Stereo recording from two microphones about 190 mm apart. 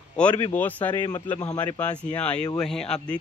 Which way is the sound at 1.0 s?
20° left (ahead or behind).